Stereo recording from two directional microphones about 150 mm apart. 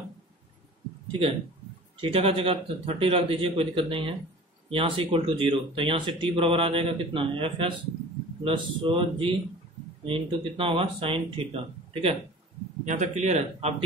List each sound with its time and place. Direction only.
2.0 s a man's voice: 40° right (ahead or behind)
12.8 s speech: 50° right (ahead or behind)